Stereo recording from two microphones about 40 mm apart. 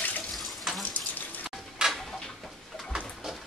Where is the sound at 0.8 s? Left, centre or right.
Left.